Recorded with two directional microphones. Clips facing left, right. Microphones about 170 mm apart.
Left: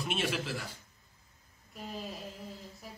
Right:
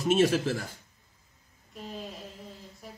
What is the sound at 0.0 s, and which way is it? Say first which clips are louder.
Speech: right 10 dB; 40° right (ahead or behind).